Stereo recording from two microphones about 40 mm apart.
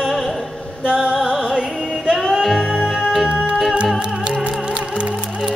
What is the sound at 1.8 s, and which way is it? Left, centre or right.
Music, centre.